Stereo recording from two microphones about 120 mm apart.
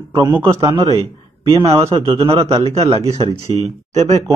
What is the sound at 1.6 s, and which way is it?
Speech, 25° right (ahead or behind).